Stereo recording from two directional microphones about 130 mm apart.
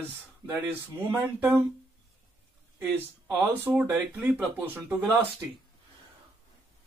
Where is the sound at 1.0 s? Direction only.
15° right (ahead or behind).